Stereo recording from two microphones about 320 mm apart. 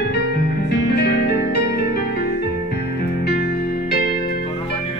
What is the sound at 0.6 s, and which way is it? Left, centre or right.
Music, left.